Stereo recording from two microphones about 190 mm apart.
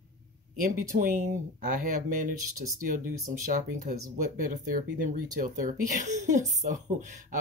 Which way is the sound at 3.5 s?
45° right (ahead or behind).